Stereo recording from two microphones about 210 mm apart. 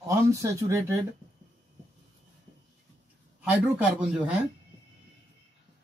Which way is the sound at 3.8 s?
5° right (ahead or behind).